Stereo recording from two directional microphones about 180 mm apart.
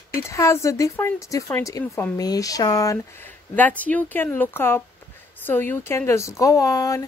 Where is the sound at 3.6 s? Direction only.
10° left (ahead or behind).